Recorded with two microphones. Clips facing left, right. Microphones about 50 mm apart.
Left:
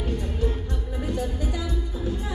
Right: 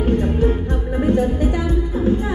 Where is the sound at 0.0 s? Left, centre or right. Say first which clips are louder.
Right 11 dB; right.